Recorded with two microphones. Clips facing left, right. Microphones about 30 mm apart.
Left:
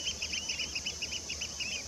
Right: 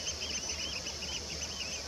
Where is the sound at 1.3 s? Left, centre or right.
Left.